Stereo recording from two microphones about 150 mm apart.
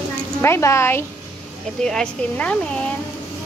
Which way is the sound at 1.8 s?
5° left (ahead or behind).